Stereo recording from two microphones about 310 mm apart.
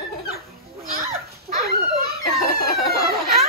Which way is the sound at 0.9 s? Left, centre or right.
Right.